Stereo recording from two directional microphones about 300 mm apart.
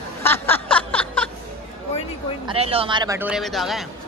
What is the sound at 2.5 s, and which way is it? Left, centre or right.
Speech, centre.